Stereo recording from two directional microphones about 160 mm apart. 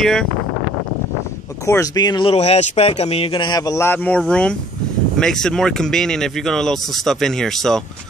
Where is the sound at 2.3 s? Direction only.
40° left (ahead or behind); by 7.8 s centre (ahead or behind).